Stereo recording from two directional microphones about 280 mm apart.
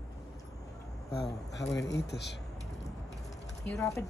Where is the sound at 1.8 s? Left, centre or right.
Left.